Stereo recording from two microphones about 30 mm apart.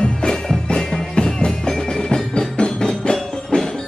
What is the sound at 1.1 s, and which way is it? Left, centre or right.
Music, left.